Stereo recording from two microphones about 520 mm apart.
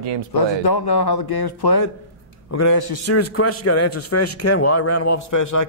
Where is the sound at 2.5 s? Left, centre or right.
Left.